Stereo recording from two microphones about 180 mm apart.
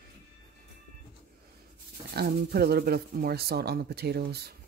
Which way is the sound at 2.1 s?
60° right (ahead or behind).